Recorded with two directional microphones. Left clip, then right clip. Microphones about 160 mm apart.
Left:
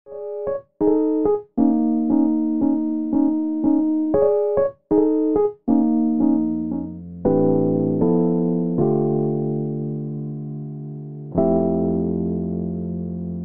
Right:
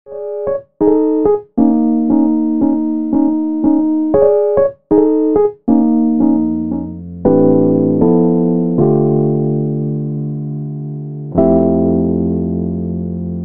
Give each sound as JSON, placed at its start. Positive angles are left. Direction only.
{"t": 0.7, "sound": "music", "side_deg": 30}
{"t": 4.1, "sound": "music", "side_deg": 45}
{"t": 4.8, "sound": "keyboard", "side_deg": 30}
{"t": 11.3, "sound": "music", "side_deg": 30}